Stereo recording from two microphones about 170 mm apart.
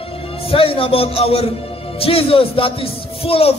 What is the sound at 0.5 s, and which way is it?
A man's voice, 35° left (ahead or behind).